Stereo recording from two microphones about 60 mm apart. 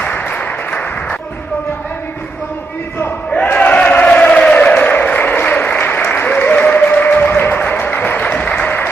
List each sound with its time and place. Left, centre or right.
0.0 s applause: left
3.5 s applause: left